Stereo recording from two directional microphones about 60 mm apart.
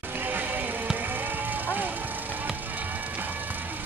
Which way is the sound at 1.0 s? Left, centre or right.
Right.